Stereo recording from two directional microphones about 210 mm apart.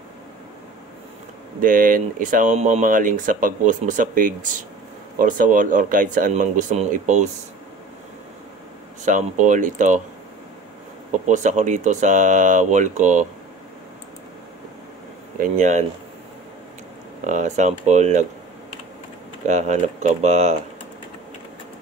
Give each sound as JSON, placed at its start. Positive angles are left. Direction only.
{"t": 1.6, "sound": "speech", "side_deg": -40}
{"t": 9.0, "sound": "speech", "side_deg": -35}
{"t": 11.2, "sound": "speech", "side_deg": -35}
{"t": 15.5, "sound": "speech", "side_deg": -35}
{"t": 17.2, "sound": "speech", "side_deg": -35}
{"t": 19.4, "sound": "speech", "side_deg": -35}